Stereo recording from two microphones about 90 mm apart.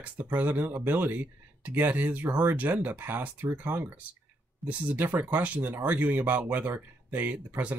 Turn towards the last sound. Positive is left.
turn(degrees=-20)  # may be behind; listen again after turning